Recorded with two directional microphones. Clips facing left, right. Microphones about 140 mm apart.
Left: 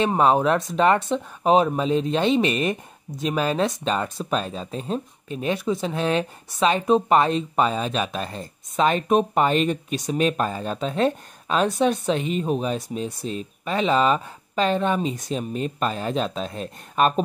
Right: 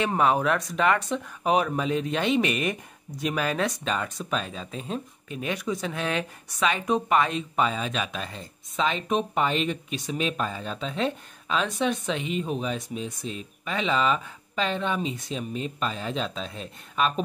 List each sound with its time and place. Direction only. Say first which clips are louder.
0.0 s speech: left 4 dB; 30° left (ahead or behind); by 17.1 s 45° left (ahead or behind)